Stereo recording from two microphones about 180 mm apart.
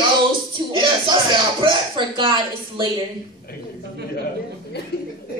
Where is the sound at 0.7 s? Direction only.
25° right (ahead or behind).